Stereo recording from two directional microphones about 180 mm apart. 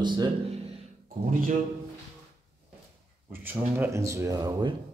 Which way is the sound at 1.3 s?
45° right (ahead or behind).